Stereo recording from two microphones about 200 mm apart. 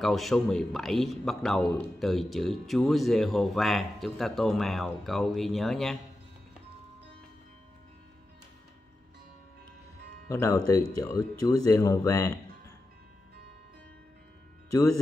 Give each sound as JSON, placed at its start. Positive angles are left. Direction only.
{"t": 0.0, "sound": "a man's voice", "side_deg": 0}
{"t": 10.2, "sound": "speech", "side_deg": 15}
{"t": 14.7, "sound": "speech", "side_deg": 15}